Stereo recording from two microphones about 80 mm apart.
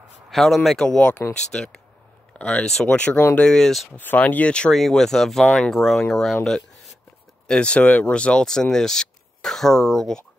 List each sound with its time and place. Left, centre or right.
0.3 s speech: centre
0.7 s speech: centre
3.9 s speech: left; by 10.2 s centre